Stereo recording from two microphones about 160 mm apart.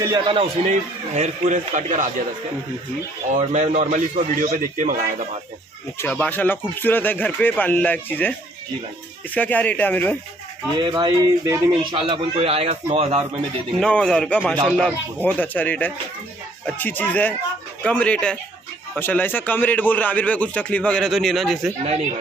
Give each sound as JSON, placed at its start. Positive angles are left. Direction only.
{"t": 0.0, "sound": "speech", "side_deg": -25}
{"t": 0.7, "sound": "a man's voice", "side_deg": -45}
{"t": 3.8, "sound": "a man's voice", "side_deg": -50}
{"t": 5.9, "sound": "a man's voice", "side_deg": 10}
{"t": 10.8, "sound": "speech", "side_deg": -25}
{"t": 11.7, "sound": "speech", "side_deg": -30}
{"t": 13.7, "sound": "a man's voice", "side_deg": 5}